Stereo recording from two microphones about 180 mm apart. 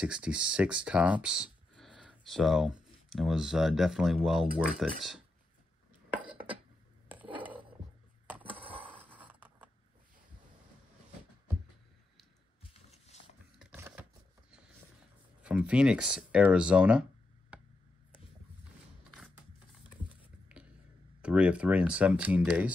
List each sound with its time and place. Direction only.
0.0 s speech: 5° right (ahead or behind)
6.0 s cutlery: 10° right (ahead or behind)
7.1 s a sound: 10° right (ahead or behind)
12.9 s a sound: 35° left (ahead or behind)
13.7 s a sound: 15° right (ahead or behind)
15.4 s speech: 5° right (ahead or behind)
17.5 s tick: 10° right (ahead or behind)
20.5 s whispering: 5° right (ahead or behind)
21.2 s speech: 5° right (ahead or behind)